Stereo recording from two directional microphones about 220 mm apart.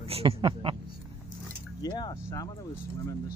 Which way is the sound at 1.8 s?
20° left (ahead or behind).